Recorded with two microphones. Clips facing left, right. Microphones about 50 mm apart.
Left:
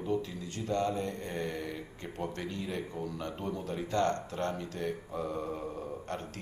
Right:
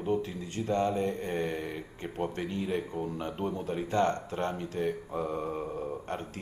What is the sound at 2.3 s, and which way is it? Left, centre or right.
Speech, right.